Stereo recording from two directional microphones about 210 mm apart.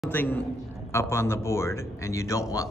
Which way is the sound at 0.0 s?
10° left (ahead or behind).